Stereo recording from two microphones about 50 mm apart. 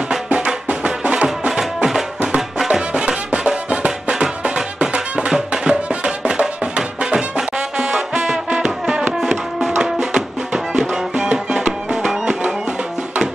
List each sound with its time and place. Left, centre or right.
0.7 s music: right
2.7 s music: centre